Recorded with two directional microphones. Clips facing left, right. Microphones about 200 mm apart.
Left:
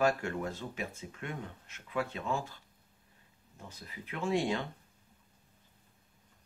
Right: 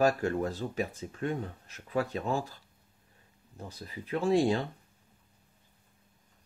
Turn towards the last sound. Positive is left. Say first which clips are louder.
# right 6 dB
turn(degrees=-35)  # may be behind; listen again after turning